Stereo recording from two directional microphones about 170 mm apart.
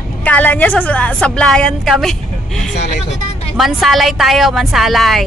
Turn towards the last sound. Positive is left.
turn(degrees=0)  # may be behind; listen again after turning